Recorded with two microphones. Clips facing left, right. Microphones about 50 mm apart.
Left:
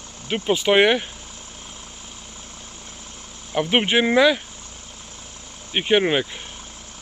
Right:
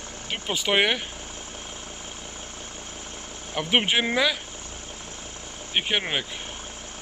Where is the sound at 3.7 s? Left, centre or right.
Centre.